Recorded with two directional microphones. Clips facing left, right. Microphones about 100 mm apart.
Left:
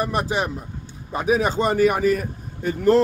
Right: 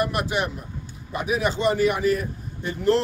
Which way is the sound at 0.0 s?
35° left (ahead or behind).